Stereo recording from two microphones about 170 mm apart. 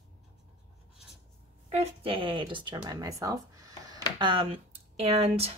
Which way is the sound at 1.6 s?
35° right (ahead or behind).